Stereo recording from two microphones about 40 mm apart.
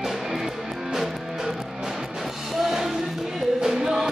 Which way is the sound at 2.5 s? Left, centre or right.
Centre.